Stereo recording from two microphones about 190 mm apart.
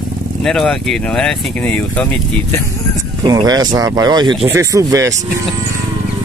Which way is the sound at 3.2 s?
20° right (ahead or behind).